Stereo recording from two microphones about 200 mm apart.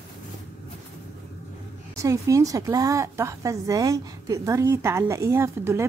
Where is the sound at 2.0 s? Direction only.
15° right (ahead or behind).